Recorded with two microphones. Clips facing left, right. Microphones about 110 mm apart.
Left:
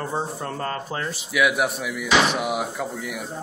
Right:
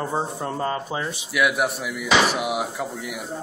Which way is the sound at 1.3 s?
Centre (ahead or behind).